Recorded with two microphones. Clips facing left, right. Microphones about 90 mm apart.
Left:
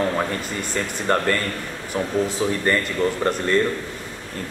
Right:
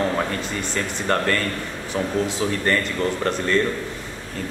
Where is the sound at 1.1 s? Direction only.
25° left (ahead or behind).